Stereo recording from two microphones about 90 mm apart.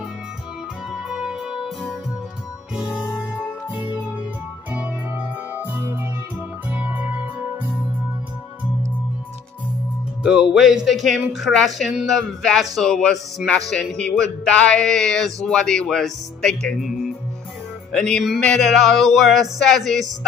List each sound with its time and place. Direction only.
0.9 s music: 5° right (ahead or behind)
4.7 s music: 15° right (ahead or behind)
10.2 s speech: 5° right (ahead or behind)
17.9 s speech: 10° left (ahead or behind)